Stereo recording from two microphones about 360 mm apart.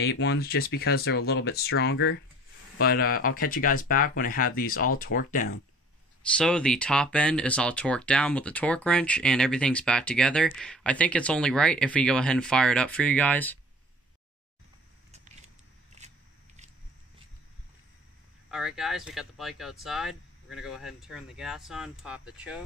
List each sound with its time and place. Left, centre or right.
0.0 s speech: left
6.3 s speech: centre
15.0 s a sound: centre
18.5 s speech: centre